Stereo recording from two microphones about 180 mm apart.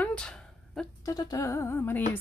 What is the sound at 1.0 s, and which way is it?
Music, 20° left (ahead or behind).